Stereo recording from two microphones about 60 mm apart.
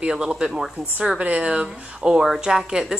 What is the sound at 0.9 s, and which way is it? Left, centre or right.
A woman's voice, right.